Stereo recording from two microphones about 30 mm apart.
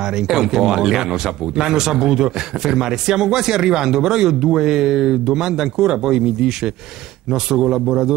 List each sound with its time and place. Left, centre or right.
0.0 s speech: centre